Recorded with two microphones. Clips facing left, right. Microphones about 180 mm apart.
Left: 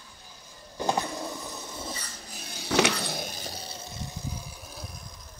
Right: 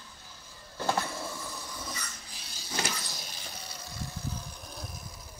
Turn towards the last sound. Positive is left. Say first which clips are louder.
# even
turn(degrees=-5)  # may be behind; listen again after turning